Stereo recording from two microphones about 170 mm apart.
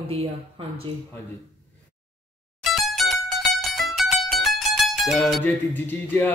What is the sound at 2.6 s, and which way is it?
Music, centre (ahead or behind).